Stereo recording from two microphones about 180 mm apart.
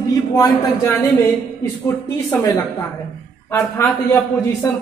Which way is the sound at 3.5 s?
15° left (ahead or behind).